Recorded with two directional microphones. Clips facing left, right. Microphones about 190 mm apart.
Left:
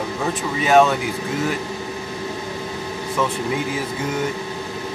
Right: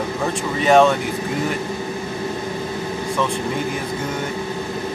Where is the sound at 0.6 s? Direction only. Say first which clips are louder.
Right 1 dB; centre (ahead or behind).